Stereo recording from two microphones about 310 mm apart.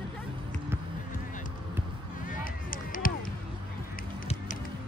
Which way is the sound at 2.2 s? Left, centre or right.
Left.